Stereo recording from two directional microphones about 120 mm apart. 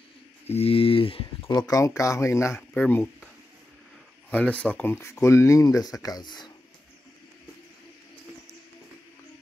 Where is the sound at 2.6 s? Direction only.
15° left (ahead or behind).